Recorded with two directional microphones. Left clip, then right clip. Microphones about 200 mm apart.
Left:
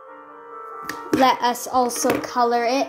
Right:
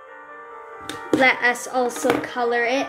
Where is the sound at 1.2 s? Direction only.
20° left (ahead or behind).